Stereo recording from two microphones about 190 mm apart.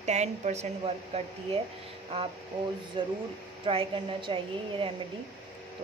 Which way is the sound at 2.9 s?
25° right (ahead or behind).